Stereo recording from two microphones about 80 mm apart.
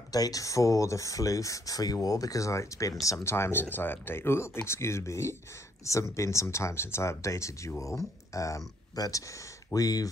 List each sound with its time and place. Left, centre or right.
0.1 s speech: left
3.3 s speech: left